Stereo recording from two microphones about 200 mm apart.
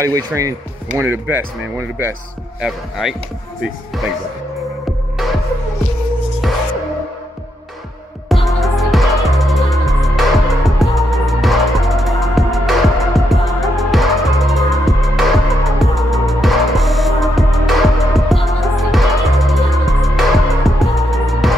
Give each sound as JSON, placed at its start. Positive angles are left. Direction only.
{"t": 0.0, "sound": "speech", "side_deg": -15}
{"t": 2.6, "sound": "speech", "side_deg": 0}
{"t": 6.4, "sound": "music", "side_deg": 0}
{"t": 8.5, "sound": "music", "side_deg": 0}